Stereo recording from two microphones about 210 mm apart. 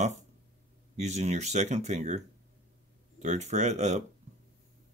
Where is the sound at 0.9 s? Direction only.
30° right (ahead or behind).